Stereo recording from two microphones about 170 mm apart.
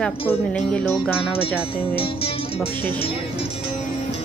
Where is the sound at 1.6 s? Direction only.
30° left (ahead or behind).